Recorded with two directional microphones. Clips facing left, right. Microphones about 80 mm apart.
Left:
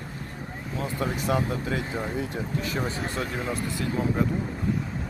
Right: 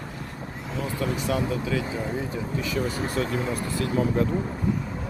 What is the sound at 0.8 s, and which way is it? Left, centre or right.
Speech, left.